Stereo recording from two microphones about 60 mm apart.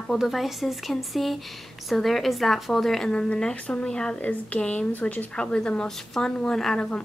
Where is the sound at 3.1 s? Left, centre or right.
Centre.